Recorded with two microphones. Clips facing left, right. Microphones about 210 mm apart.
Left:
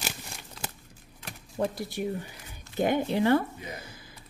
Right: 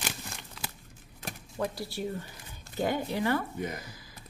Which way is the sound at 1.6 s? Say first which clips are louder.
Left 3 dB; 20° left (ahead or behind).